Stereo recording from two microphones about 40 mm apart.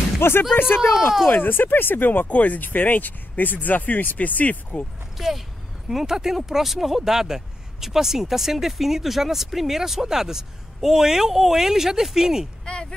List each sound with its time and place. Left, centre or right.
0.2 s speech: left
0.7 s speech: centre
1.3 s speech: left
2.2 s speech: left
5.1 s speech: centre
12.7 s a sound: left